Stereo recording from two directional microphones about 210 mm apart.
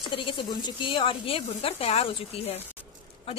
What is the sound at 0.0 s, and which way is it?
Speech, 25° left (ahead or behind).